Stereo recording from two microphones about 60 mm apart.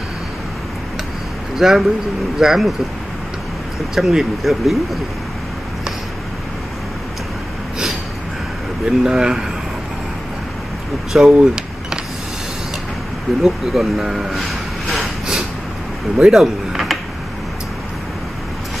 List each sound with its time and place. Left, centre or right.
1.6 s speech: centre
3.9 s speech: centre
8.8 s speech: centre
11.2 s vehicle: centre
13.4 s speech: centre
16.3 s a sound: centre